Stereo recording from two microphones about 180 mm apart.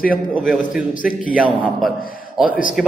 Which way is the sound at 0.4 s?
5° right (ahead or behind).